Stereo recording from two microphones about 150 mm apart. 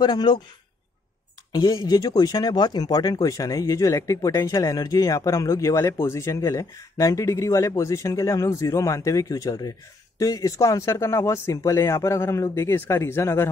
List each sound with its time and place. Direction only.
0.0 s speech: 30° left (ahead or behind)
1.5 s speech: 25° left (ahead or behind)